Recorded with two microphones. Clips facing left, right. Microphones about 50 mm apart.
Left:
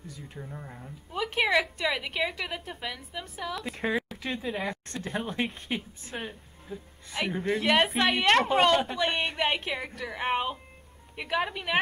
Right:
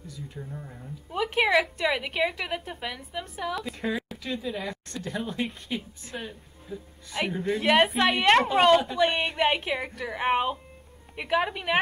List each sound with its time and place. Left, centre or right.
0.4 s speech: centre
1.1 s a woman's voice: centre
4.2 s speech: left
7.2 s a woman's voice: centre